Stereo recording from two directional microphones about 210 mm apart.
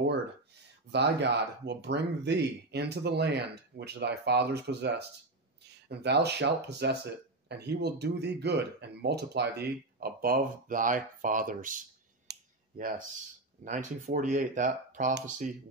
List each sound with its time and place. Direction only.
0.9 s speech: 55° right (ahead or behind)
12.3 s clicking: 40° right (ahead or behind)
13.7 s speech: 35° right (ahead or behind)